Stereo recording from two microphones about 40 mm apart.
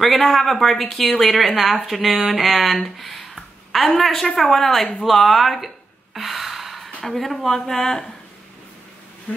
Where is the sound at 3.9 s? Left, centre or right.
Centre.